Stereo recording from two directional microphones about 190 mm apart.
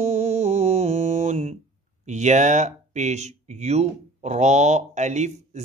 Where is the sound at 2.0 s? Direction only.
35° right (ahead or behind).